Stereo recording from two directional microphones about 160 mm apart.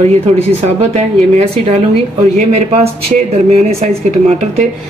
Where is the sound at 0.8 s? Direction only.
45° right (ahead or behind).